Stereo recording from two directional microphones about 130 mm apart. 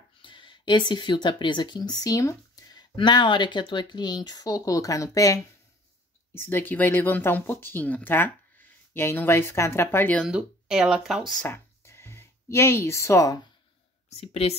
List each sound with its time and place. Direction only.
0.2 s speech: 40° left (ahead or behind); by 10.2 s 15° left (ahead or behind)
10.2 s speech: 5° right (ahead or behind)
11.4 s a sound: 20° left (ahead or behind)
14.1 s speech: 55° left (ahead or behind)